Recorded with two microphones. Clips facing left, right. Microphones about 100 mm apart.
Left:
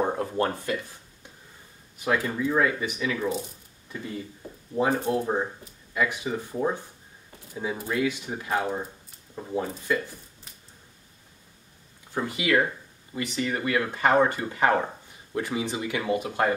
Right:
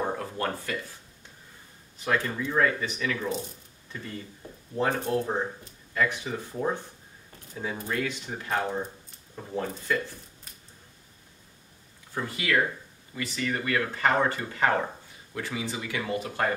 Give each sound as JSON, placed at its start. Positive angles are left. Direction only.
{"t": 0.0, "sound": "speech", "side_deg": 25}
{"t": 2.0, "sound": "speech", "side_deg": 10}
{"t": 4.7, "sound": "speech", "side_deg": 10}
{"t": 12.1, "sound": "speech", "side_deg": 15}